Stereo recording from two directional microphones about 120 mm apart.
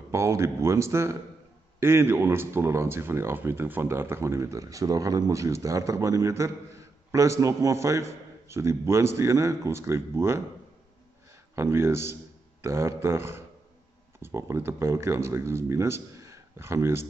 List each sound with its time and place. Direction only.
0.1 s speech: 25° right (ahead or behind)
11.5 s speech: 20° right (ahead or behind)